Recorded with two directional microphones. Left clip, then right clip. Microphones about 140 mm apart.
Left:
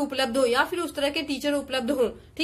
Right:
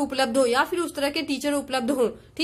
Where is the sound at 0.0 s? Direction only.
35° right (ahead or behind).